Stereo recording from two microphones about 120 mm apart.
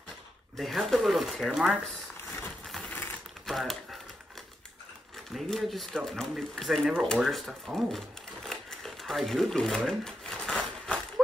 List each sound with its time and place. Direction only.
0.6 s speech: centre (ahead or behind)
2.6 s a sound: centre (ahead or behind)
2.9 s sewing machine: 15° left (ahead or behind)
3.4 s speech: centre (ahead or behind)
5.3 s speech: centre (ahead or behind)
8.5 s crumpling: 5° left (ahead or behind)
9.8 s a sound: 5° left (ahead or behind)